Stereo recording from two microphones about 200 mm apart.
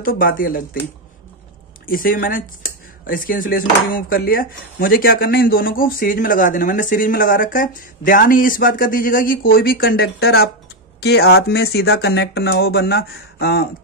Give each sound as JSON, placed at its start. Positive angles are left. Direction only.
{"t": 0.0, "sound": "speech", "side_deg": 45}
{"t": 1.9, "sound": "speech", "side_deg": 45}